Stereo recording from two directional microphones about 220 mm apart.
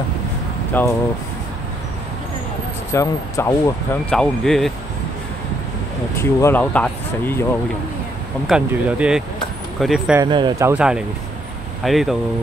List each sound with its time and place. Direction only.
0.7 s speech: 10° left (ahead or behind)
2.9 s speech: 15° left (ahead or behind)
6.1 s speech: 10° left (ahead or behind)
8.5 s speech: 5° right (ahead or behind)
10.2 s speech: 20° right (ahead or behind)
10.7 s speech: 5° right (ahead or behind)